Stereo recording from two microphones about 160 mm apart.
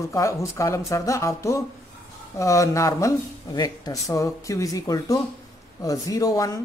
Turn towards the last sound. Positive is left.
turn(degrees=20)  # may be behind; listen again after turning